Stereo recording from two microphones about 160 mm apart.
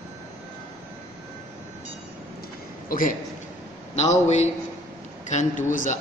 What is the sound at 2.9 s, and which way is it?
Speech, 60° left (ahead or behind).